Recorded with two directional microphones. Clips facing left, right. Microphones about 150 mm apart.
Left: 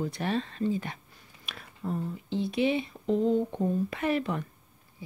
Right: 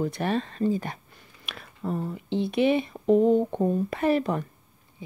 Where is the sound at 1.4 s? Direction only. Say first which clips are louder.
Right 3 dB; 75° right (ahead or behind); by 4.0 s 55° right (ahead or behind).